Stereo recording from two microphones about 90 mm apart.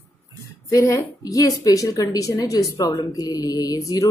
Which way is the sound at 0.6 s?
35° left (ahead or behind).